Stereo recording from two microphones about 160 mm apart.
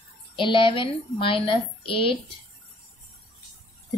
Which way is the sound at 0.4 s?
30° left (ahead or behind).